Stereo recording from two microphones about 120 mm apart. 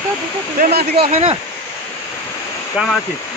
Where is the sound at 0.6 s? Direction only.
60° right (ahead or behind).